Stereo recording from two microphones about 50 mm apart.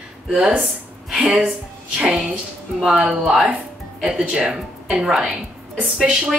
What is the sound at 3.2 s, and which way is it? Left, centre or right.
Speech, centre.